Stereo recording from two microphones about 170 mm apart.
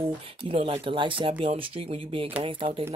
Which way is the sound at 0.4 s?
30° right (ahead or behind).